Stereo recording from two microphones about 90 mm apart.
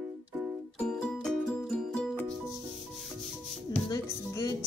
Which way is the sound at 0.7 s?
10° left (ahead or behind).